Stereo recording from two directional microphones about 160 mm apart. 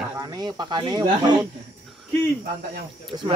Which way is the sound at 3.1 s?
25° right (ahead or behind).